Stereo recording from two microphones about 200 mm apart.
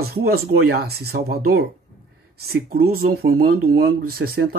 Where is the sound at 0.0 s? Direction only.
50° right (ahead or behind).